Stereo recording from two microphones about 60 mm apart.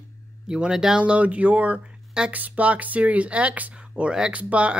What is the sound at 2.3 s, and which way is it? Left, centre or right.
Speech, right.